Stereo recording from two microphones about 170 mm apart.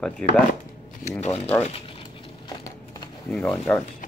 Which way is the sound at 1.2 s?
35° left (ahead or behind).